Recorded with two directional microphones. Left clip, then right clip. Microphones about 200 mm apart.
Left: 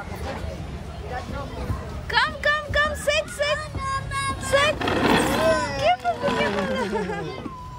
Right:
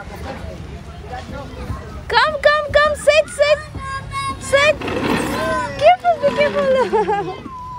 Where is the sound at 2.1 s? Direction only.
5° left (ahead or behind).